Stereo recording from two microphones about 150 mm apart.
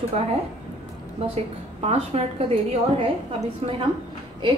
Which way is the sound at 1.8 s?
45° right (ahead or behind).